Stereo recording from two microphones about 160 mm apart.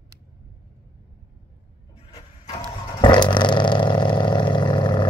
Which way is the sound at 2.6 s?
30° left (ahead or behind).